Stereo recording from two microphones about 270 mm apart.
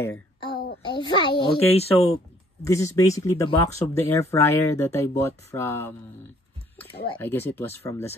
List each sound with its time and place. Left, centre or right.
0.0 s a sound: centre
0.8 s speech: centre
2.6 s speech: centre
7.1 s speech: centre